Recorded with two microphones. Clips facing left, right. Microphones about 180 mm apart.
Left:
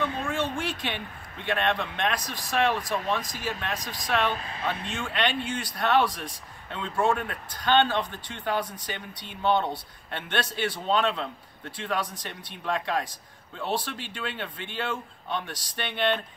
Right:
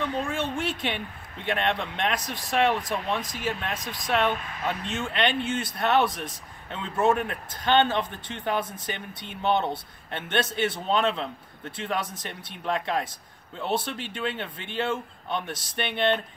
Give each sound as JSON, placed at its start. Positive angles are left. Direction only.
{"t": 0.4, "sound": "a man's voice", "side_deg": -20}
{"t": 4.3, "sound": "speech", "side_deg": 30}
{"t": 4.9, "sound": "a man's voice", "side_deg": -25}